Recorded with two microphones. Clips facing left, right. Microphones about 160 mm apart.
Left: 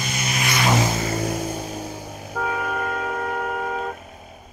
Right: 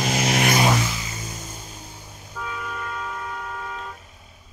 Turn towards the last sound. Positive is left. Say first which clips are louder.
# left 8 dB
turn(degrees=65)  # may be behind; listen again after turning